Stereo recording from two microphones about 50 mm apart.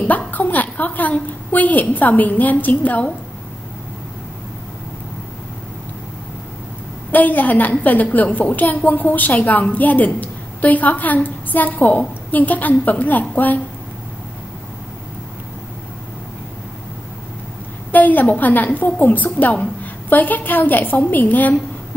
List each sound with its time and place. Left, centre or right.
0.3 s a woman's voice: left
7.1 s a woman's voice: left
17.9 s a woman's voice: left